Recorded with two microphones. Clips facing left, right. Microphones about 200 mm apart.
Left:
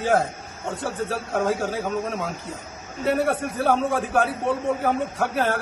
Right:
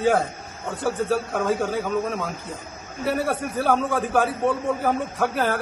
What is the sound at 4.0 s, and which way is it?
A man's voice, centre (ahead or behind).